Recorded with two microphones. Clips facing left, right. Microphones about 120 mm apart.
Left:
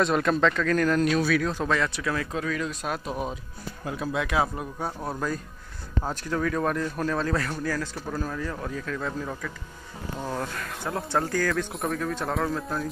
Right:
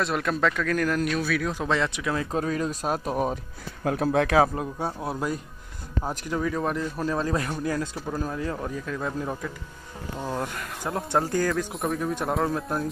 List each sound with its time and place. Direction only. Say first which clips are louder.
0.0 s speech: left 3 dB; centre (ahead or behind)
1.7 s speech: right 1 dB; 20° right (ahead or behind)
2.3 s speech: right 3 dB; 40° right (ahead or behind)
4.6 s speech: right 3 dB; 25° right (ahead or behind)
11.4 s speech: right 1 dB; centre (ahead or behind)
12.0 s speech: right 3 dB; 20° right (ahead or behind)